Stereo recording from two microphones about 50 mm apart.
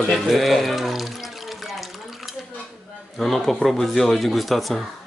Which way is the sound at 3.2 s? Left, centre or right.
Centre.